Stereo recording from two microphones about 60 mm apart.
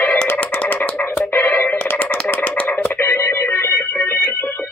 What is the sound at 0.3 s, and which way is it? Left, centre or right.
Music, left.